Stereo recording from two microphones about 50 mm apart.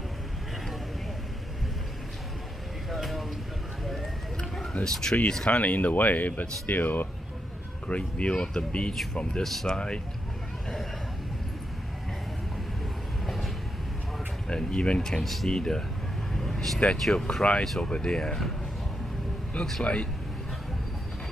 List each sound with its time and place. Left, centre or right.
2.9 s a sound: centre
4.8 s speech: centre
5.5 s speech: left
7.9 s speech: left
9.4 s speech: centre
14.5 s speech: centre
16.3 s vehicle: centre
16.8 s speech: centre
19.8 s speech: left